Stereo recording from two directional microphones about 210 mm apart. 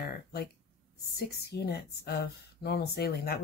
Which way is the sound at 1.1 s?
50° left (ahead or behind).